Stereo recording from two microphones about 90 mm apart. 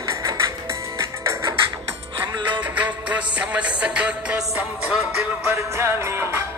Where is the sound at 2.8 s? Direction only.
15° right (ahead or behind).